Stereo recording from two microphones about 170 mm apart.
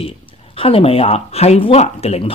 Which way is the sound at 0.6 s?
35° left (ahead or behind).